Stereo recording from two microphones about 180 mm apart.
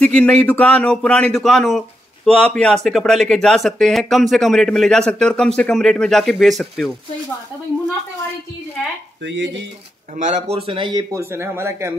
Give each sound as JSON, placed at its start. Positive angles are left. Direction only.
{"t": 0.0, "sound": "speech", "side_deg": 5}
{"t": 9.2, "sound": "speech", "side_deg": -80}
{"t": 10.1, "sound": "speech", "side_deg": -40}
{"t": 10.7, "sound": "speech", "side_deg": -25}